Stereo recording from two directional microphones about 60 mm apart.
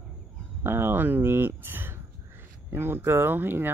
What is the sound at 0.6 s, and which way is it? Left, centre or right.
Speech, right.